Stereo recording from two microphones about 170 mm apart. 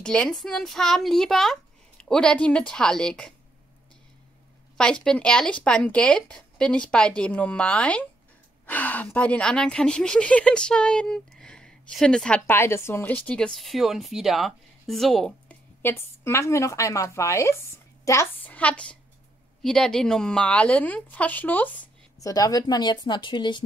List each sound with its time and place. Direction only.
0.0 s a woman's voice: 5° left (ahead or behind)
4.7 s a woman's voice: 5° left (ahead or behind)
15.8 s speech: 15° left (ahead or behind)
22.2 s speech: 20° left (ahead or behind)